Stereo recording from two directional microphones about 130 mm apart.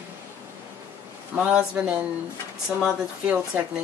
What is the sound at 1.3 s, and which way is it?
Speech, 10° right (ahead or behind).